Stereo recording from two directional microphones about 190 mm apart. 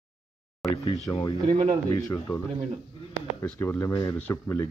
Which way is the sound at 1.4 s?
35° right (ahead or behind).